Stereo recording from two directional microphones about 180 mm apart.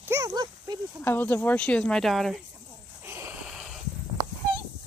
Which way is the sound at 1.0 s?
10° left (ahead or behind).